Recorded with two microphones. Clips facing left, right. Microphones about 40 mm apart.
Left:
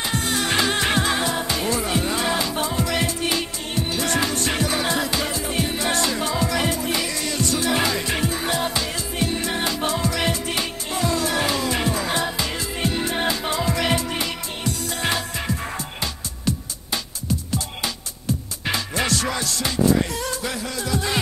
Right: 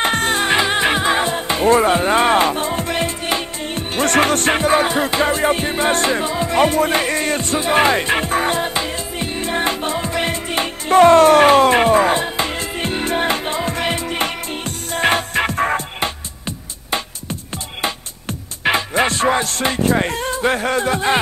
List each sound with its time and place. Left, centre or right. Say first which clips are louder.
0.0 s music: right 7 dB; right
1.2 s music: right 6 dB; right
4.6 s music: right 7 dB; right
6.5 s music: right 8 dB; right
16.4 s music: right 1 dB; right